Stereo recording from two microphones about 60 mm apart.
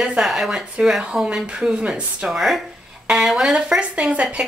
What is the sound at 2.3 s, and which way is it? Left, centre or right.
A woman's voice, centre.